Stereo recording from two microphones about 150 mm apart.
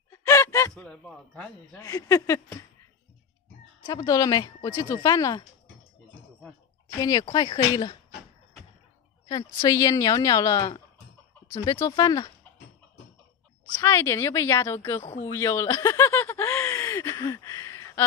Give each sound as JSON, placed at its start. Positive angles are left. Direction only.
{"t": 0.1, "sound": "a sound", "side_deg": 20}
{"t": 0.8, "sound": "speech", "side_deg": 10}
{"t": 1.8, "sound": "a woman's voice", "side_deg": 25}
{"t": 3.8, "sound": "a woman's voice", "side_deg": 25}
{"t": 7.0, "sound": "a woman's voice", "side_deg": 25}
{"t": 9.3, "sound": "a woman's voice", "side_deg": 25}
{"t": 13.8, "sound": "speech", "side_deg": 20}
{"t": 15.3, "sound": "chuckle", "side_deg": 20}